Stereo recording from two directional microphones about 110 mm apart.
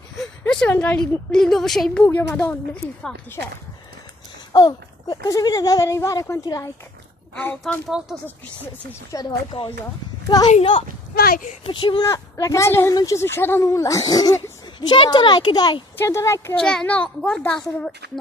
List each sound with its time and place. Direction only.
0.5 s speech: 10° left (ahead or behind)
2.0 s a child's voice: 20° left (ahead or behind)
4.5 s speech: 40° left (ahead or behind)
7.7 s speech: 5° left (ahead or behind)
9.1 s a child's voice: 40° left (ahead or behind)
10.5 s speech: 60° left (ahead or behind)
11.6 s a child's voice: 45° left (ahead or behind)
12.0 s speech: 30° left (ahead or behind)
16.0 s speech: 25° left (ahead or behind)
16.5 s a child's voice: 5° left (ahead or behind)